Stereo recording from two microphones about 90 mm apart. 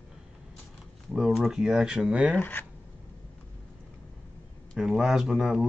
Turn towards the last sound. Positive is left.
turn(degrees=-5)  # may be behind; listen again after turning